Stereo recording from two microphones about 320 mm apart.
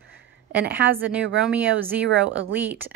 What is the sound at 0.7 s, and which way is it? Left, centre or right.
Speech, right.